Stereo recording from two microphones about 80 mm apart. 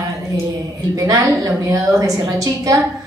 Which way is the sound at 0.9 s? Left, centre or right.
Right.